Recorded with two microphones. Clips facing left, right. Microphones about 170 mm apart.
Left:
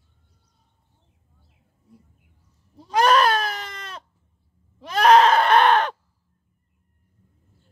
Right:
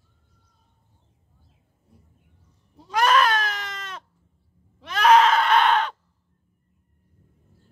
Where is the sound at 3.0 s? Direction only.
35° left (ahead or behind).